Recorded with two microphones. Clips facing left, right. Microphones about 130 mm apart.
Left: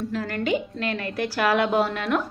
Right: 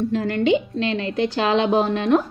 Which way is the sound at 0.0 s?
25° right (ahead or behind).